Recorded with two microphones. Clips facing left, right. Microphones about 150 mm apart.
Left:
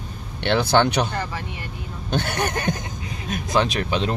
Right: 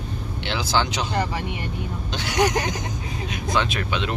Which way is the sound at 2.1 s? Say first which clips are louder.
Right 2 dB; 55° left (ahead or behind).